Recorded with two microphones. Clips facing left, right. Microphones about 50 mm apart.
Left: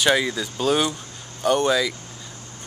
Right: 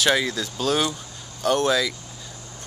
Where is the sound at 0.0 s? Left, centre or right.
Centre.